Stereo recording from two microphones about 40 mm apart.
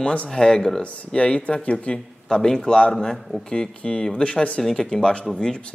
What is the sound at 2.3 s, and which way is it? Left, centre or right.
Speech, centre.